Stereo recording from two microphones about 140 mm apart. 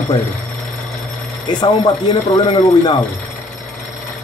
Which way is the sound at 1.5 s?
30° left (ahead or behind).